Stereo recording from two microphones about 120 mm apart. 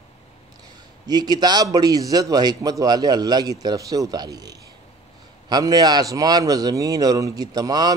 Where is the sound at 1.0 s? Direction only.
35° right (ahead or behind).